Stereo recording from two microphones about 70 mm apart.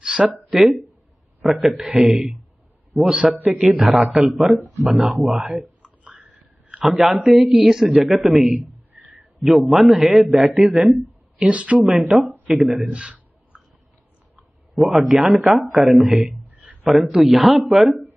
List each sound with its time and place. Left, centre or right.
0.0 s speech: centre
1.4 s speech: centre
3.1 s a woman's voice: centre
3.7 s speech: centre
5.8 s a sound: right
6.8 s speech: centre
11.3 s a woman's voice: centre
11.8 s speech: centre
12.8 s a sound: centre
14.8 s speech: centre